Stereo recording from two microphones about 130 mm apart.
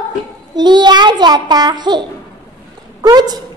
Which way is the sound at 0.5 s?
35° right (ahead or behind).